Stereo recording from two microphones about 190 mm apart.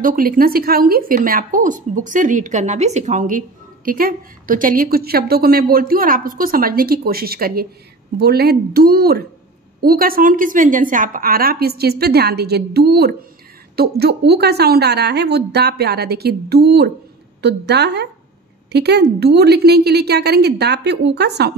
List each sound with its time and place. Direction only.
0.0 s a woman's voice: 45° right (ahead or behind)